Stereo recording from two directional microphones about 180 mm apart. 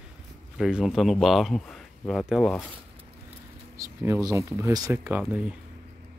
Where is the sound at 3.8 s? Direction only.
15° right (ahead or behind).